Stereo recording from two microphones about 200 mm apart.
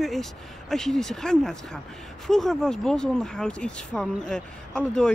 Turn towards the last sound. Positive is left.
turn(degrees=5)  # may be behind; listen again after turning